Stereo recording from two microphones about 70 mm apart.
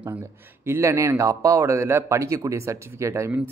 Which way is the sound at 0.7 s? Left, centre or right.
Right.